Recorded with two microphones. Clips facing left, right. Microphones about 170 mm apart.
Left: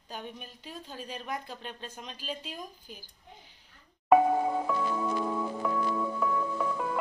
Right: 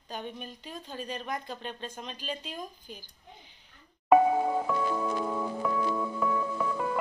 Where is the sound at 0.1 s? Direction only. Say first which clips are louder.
Right 3 dB; 5° left (ahead or behind).